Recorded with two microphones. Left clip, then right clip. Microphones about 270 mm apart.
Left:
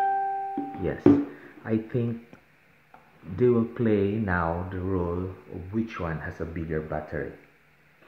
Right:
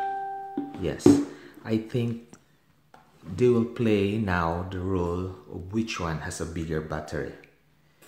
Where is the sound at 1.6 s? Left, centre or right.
Centre.